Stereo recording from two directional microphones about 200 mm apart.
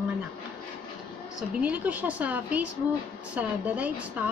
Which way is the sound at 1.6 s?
5° right (ahead or behind).